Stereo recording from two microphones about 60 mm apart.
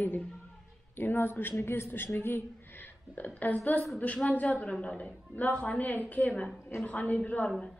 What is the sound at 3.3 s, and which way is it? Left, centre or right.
A woman's voice, left.